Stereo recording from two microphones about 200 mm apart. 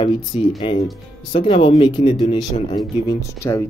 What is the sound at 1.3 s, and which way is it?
Speech, 25° left (ahead or behind).